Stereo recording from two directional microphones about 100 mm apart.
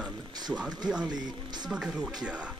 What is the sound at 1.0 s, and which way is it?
Speech, 45° right (ahead or behind).